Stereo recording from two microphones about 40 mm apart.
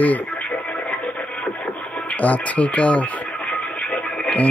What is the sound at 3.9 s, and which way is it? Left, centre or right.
Music, left.